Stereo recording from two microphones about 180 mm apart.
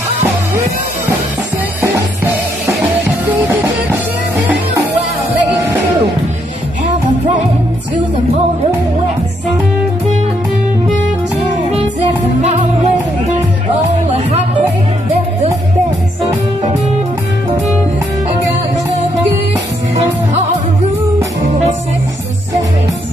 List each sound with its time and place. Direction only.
12.4 s music: 35° right (ahead or behind)